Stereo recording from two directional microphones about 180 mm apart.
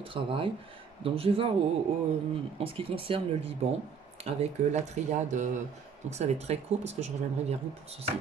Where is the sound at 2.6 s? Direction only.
30° right (ahead or behind).